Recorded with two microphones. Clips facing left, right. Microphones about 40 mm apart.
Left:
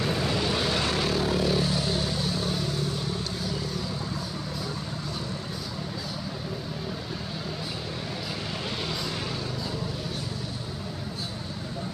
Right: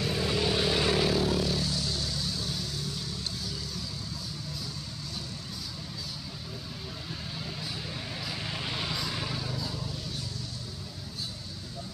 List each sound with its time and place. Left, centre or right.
0.0 s vehicle: left
0.3 s vehicle: centre
1.2 s vehicle: centre
1.6 s vehicle: left
8.8 s vehicle: centre